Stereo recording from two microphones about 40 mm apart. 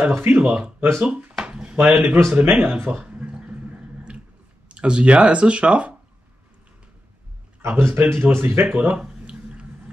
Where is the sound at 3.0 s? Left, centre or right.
Right.